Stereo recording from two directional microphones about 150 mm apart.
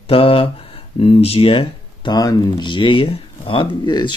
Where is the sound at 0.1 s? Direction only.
35° left (ahead or behind).